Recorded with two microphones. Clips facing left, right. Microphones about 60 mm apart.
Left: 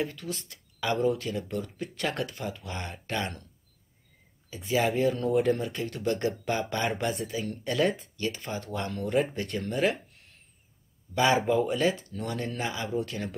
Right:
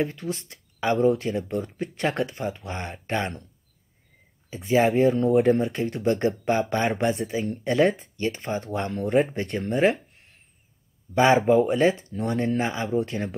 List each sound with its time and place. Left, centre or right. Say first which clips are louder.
0.0 s speech: right 5 dB; right
4.6 s speech: right 6 dB; right
10.0 s a sound: right 1 dB; right
11.1 s speech: right 6 dB; right